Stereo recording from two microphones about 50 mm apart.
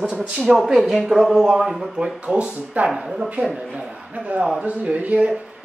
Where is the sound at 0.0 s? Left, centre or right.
Right.